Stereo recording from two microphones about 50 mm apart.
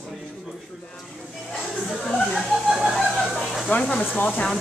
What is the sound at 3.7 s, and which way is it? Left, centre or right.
Speech, left.